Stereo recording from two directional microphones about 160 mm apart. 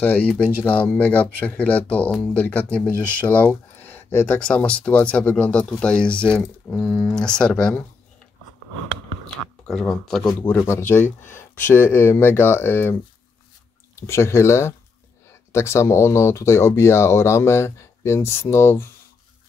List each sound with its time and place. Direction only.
0.0 s speech: 10° left (ahead or behind)
9.4 s speech: 5° left (ahead or behind)
13.9 s speech: 15° left (ahead or behind)